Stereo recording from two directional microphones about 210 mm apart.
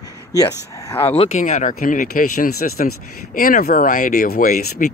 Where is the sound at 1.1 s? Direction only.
30° left (ahead or behind).